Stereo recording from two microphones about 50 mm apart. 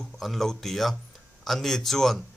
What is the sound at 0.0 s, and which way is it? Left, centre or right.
Speech, centre.